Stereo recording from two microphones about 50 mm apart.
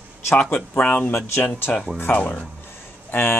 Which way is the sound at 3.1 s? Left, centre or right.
Left.